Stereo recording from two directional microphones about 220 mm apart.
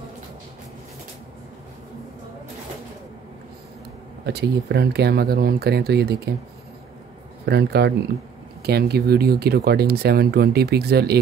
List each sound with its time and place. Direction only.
4.3 s speech: 50° right (ahead or behind)
7.4 s speech: 50° right (ahead or behind)